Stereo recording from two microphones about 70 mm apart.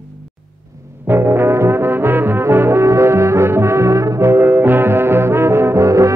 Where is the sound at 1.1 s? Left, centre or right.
Right.